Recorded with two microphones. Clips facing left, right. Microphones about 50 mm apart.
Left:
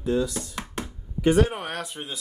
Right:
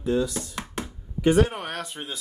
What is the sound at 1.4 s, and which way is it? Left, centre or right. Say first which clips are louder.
Speech: left 1 dB; centre.